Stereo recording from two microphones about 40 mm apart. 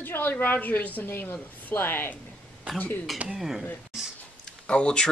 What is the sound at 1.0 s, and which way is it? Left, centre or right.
Speech, left.